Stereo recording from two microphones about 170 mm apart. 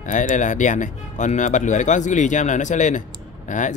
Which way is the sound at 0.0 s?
50° left (ahead or behind).